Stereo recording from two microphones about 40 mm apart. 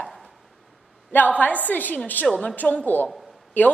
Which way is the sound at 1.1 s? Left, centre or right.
Left.